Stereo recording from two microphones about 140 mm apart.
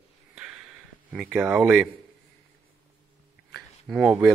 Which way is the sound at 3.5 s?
Centre (ahead or behind).